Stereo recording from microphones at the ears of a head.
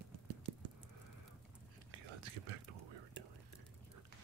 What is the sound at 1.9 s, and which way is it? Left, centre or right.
Whispering, right.